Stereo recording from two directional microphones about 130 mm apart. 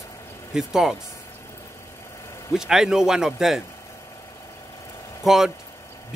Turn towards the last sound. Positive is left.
turn(degrees=0)  # may be behind; listen again after turning